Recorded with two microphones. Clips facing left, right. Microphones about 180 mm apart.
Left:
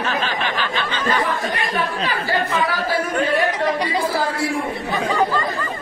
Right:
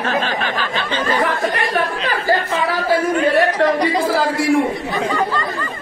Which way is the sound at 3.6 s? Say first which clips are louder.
Right 5 dB; 90° right.